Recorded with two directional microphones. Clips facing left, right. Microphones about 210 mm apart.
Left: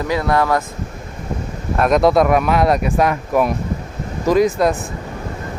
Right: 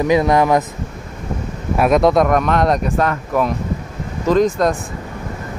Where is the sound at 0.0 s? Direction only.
20° right (ahead or behind).